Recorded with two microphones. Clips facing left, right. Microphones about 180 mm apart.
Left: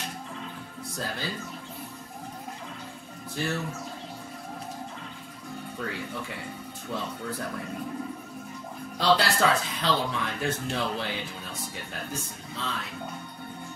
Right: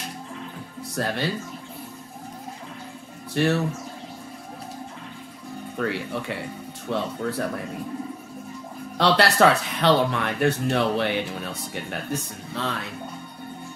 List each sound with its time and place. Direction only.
0.9 s speech: 70° right (ahead or behind)
3.3 s speech: 70° right (ahead or behind)
5.8 s speech: 70° right (ahead or behind)
8.9 s speech: 70° right (ahead or behind)